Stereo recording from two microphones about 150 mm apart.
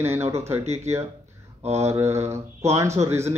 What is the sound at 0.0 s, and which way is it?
Speech, 15° right (ahead or behind).